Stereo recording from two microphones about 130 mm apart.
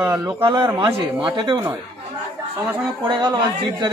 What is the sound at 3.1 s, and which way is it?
Speech, 35° right (ahead or behind).